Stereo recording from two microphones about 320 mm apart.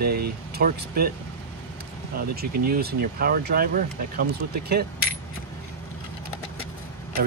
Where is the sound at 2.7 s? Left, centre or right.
Right.